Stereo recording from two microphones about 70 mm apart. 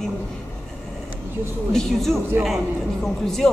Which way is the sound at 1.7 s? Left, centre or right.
Centre.